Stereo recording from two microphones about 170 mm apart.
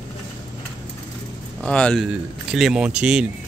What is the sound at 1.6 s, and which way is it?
Speech, 5° left (ahead or behind).